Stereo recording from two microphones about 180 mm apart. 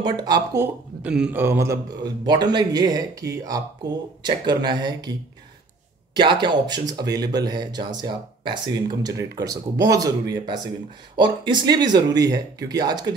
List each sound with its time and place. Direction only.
0.2 s speech: 20° right (ahead or behind)
1.0 s speech: 5° right (ahead or behind); by 5.1 s 25° right (ahead or behind)
6.1 s speech: 25° right (ahead or behind)